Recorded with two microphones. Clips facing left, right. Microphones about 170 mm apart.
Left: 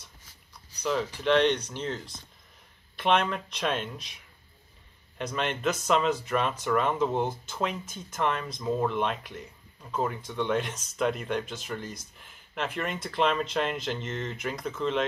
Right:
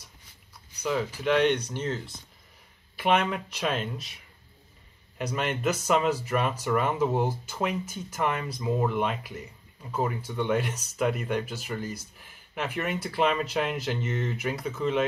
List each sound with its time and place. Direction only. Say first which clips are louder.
0.8 s speech: even; 5° right (ahead or behind)